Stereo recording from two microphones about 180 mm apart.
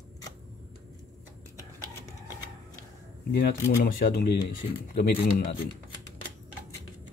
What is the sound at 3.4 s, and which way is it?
Speech, 55° left (ahead or behind).